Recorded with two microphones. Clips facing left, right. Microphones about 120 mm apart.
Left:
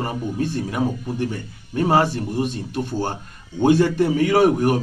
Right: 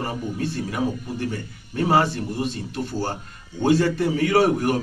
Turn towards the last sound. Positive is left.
turn(degrees=15)  # may be behind; listen again after turning